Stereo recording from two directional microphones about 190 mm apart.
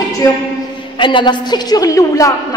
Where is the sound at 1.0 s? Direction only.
25° left (ahead or behind).